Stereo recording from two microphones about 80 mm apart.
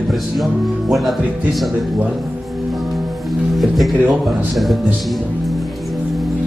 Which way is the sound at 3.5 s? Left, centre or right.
Centre.